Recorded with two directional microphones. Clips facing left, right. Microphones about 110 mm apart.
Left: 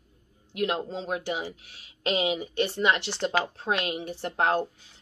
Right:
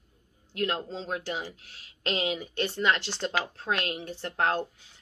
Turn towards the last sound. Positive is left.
turn(degrees=20)  # may be behind; listen again after turning